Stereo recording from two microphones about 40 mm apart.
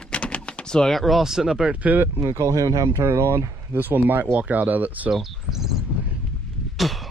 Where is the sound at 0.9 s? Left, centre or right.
Centre.